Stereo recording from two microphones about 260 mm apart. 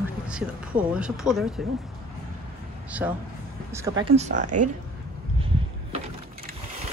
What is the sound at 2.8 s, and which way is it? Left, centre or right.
Speech, centre.